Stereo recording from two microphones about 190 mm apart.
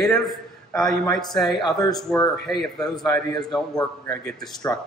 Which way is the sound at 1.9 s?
Centre (ahead or behind).